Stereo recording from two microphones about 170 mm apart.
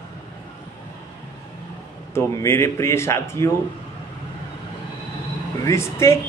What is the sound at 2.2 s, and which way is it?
A woman's voice, 15° left (ahead or behind).